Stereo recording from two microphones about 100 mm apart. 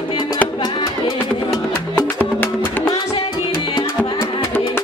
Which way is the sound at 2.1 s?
20° left (ahead or behind).